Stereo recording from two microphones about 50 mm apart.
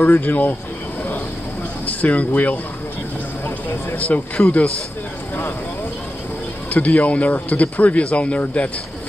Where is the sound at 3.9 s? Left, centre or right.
Left.